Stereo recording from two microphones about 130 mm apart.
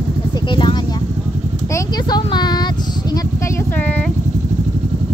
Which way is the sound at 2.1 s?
35° left (ahead or behind).